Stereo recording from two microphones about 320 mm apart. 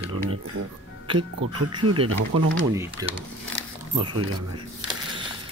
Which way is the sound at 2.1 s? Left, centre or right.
Right.